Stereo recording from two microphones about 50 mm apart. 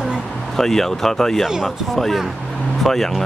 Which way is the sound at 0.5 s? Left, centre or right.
Centre.